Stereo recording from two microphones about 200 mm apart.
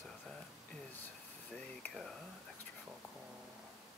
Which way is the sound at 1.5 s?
5° left (ahead or behind).